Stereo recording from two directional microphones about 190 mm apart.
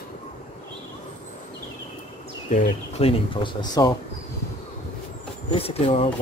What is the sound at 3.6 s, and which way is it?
Speech, 20° left (ahead or behind).